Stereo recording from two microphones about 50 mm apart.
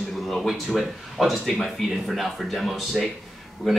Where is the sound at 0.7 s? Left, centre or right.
Centre.